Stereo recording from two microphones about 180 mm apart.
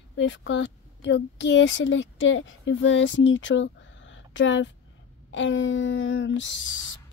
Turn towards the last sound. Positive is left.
turn(degrees=90)